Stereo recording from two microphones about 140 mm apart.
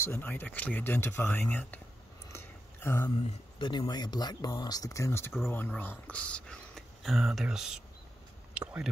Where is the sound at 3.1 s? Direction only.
40° left (ahead or behind).